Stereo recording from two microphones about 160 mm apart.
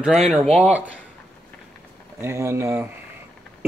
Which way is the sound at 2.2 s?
20° right (ahead or behind).